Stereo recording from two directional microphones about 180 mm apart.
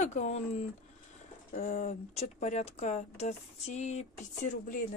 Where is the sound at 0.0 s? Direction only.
40° left (ahead or behind).